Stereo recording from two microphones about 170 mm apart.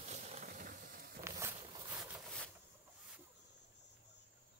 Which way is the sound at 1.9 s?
5° right (ahead or behind).